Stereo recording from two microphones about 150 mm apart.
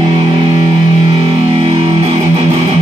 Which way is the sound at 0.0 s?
40° right (ahead or behind).